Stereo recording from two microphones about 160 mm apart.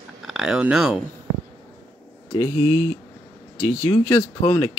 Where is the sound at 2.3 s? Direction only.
35° left (ahead or behind).